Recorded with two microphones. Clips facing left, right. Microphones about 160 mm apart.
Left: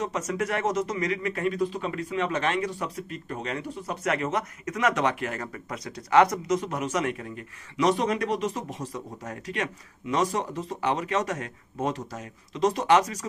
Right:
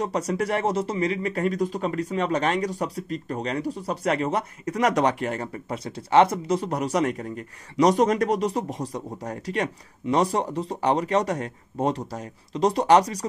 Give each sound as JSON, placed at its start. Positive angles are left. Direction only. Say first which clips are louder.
{"t": 0.0, "sound": "speech", "louder": "right 3 dB", "side_deg": -35}